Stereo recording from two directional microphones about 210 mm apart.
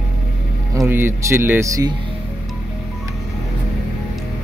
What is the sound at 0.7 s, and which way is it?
Speech, 10° right (ahead or behind).